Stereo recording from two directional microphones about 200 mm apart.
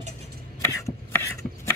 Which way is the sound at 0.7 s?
15° left (ahead or behind).